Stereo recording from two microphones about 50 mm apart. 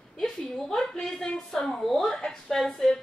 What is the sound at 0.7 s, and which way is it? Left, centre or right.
A woman's voice, centre.